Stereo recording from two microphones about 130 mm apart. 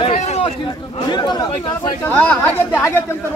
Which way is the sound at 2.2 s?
10° left (ahead or behind).